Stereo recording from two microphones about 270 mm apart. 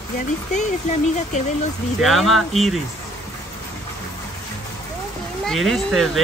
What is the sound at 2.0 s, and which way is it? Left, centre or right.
Speech, centre.